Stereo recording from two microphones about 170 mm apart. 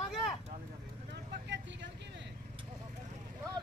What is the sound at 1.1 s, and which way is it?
Vehicle, 90° right.